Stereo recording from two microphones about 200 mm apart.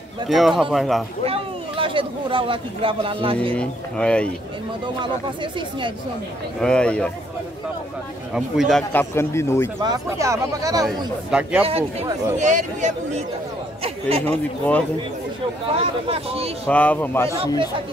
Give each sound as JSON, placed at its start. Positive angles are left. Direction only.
{"t": 0.3, "sound": "speech", "side_deg": 0}
{"t": 1.2, "sound": "speech", "side_deg": -25}
{"t": 3.5, "sound": "speech", "side_deg": 5}
{"t": 5.0, "sound": "speech", "side_deg": -25}
{"t": 6.6, "sound": "speech", "side_deg": 5}
{"t": 8.4, "sound": "speech", "side_deg": 0}
{"t": 9.1, "sound": "speech", "side_deg": 15}
{"t": 9.8, "sound": "speech", "side_deg": -20}
{"t": 11.2, "sound": "speech", "side_deg": -5}
{"t": 11.6, "sound": "speech", "side_deg": -30}
{"t": 14.2, "sound": "speech", "side_deg": 5}
{"t": 15.8, "sound": "speech", "side_deg": -30}
{"t": 16.6, "sound": "speech", "side_deg": 10}